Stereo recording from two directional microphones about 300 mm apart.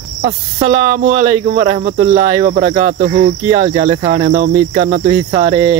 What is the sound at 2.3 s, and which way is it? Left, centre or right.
Cricket, centre.